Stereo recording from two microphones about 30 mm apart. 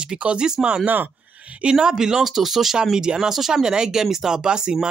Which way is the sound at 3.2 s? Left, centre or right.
Centre.